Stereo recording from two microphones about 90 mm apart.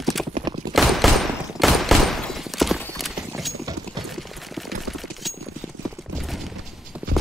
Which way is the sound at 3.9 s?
Centre (ahead or behind).